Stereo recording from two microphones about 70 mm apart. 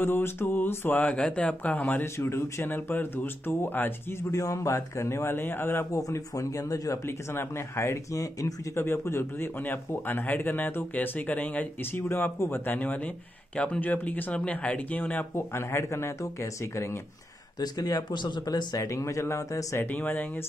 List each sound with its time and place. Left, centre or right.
0.0 s speech: left
1.0 s a man's voice: centre
2.1 s speech: left
5.9 s speech: left
7.1 s speech: left
8.7 s a man's voice: left
15.3 s speech: left
17.6 s speech: left
18.8 s speech: left
19.8 s a man's voice: left